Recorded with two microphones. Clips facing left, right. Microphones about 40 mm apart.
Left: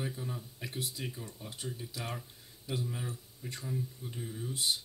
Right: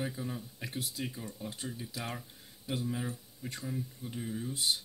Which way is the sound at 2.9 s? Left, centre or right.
Centre.